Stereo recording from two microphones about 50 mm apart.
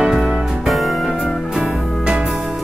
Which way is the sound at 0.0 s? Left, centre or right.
Centre.